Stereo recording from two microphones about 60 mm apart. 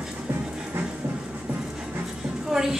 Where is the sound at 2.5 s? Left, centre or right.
Centre.